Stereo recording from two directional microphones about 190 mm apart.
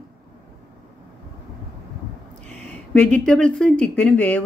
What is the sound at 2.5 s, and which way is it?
Speech, 5° left (ahead or behind).